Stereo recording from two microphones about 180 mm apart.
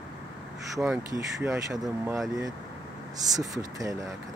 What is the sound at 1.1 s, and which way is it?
Speech, 15° right (ahead or behind).